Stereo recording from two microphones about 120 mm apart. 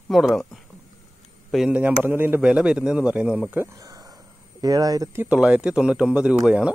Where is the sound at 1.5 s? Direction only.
5° right (ahead or behind).